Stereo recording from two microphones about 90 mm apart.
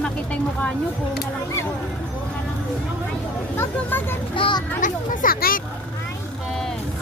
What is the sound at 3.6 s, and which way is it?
Speech, 20° left (ahead or behind).